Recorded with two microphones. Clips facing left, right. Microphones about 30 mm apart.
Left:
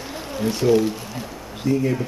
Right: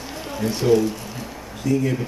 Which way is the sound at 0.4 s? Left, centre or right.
Centre.